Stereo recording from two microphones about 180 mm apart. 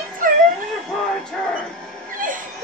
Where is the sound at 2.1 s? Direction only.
50° right (ahead or behind).